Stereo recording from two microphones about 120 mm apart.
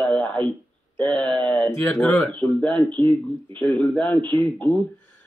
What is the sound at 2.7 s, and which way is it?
Speech, 40° right (ahead or behind).